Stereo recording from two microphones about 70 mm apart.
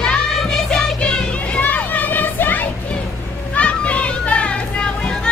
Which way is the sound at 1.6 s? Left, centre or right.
Left.